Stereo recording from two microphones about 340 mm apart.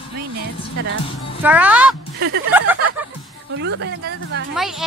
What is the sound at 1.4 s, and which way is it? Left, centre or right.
Speech, centre.